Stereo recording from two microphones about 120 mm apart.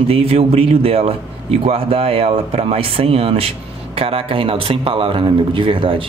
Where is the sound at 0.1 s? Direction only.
55° right (ahead or behind).